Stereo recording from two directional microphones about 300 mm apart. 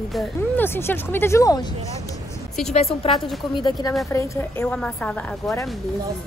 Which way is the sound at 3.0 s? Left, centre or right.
Centre.